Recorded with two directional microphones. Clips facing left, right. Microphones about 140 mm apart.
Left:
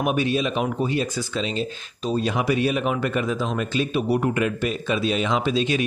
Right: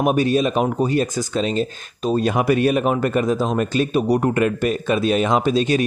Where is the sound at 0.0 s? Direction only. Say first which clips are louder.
Right 5 dB; 40° right (ahead or behind).